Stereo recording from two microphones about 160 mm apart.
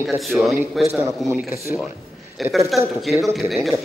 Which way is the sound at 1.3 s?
15° right (ahead or behind).